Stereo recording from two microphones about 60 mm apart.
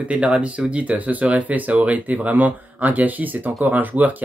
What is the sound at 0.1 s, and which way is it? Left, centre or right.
Speech, right.